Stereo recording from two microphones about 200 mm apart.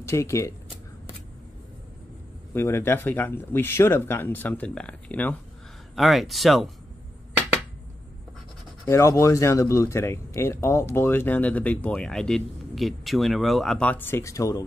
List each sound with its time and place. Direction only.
0.0 s speech: 15° left (ahead or behind)
2.5 s speech: 10° left (ahead or behind)
8.8 s speech: 15° left (ahead or behind)